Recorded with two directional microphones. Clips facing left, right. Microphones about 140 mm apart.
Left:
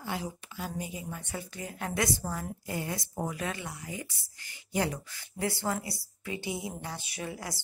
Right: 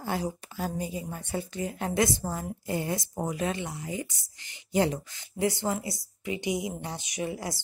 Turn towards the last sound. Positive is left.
turn(degrees=-20)  # may be behind; listen again after turning